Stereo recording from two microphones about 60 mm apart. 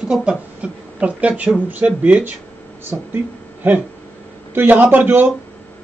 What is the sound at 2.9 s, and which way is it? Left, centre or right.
Speech, right.